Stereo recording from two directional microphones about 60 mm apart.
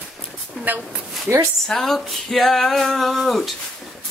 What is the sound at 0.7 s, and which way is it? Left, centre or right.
Speech, right.